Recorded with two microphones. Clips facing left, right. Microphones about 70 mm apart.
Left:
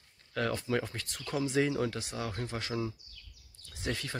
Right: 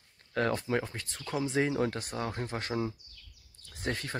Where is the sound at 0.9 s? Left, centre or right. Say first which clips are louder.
Even; right.